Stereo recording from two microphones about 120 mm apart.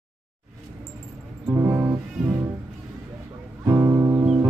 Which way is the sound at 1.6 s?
20° right (ahead or behind).